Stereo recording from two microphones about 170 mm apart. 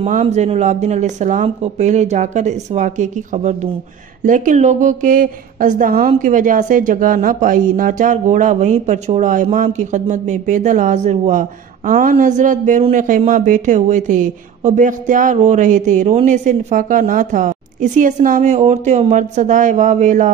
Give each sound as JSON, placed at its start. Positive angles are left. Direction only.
{"t": 0.0, "sound": "a woman's voice", "side_deg": -40}